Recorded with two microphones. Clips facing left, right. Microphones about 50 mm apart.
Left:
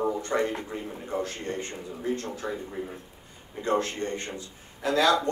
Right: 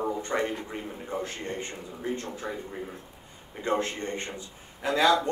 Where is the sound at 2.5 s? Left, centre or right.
Centre.